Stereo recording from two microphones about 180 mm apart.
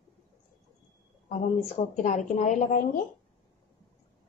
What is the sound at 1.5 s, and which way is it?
Speech, 45° left (ahead or behind).